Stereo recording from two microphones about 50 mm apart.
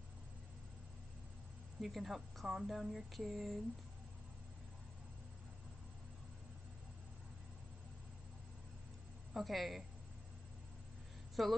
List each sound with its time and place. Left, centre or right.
1.8 s a woman's voice: centre
9.3 s a woman's voice: centre
11.4 s a woman's voice: centre